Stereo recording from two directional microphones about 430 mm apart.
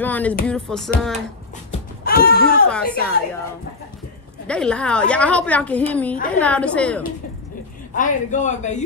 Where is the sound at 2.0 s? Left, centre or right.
Left.